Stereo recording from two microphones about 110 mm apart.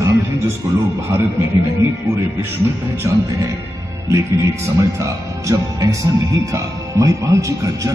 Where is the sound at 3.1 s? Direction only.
25° right (ahead or behind).